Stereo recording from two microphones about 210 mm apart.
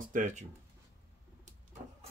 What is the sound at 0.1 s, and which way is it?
Speech, 35° right (ahead or behind).